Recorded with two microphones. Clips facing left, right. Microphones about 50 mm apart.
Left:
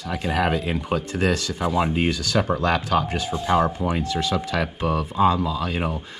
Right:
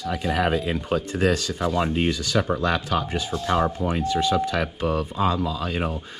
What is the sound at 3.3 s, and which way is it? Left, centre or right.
Speech, centre.